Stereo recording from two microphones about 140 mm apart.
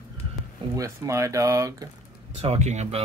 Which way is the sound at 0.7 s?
20° right (ahead or behind).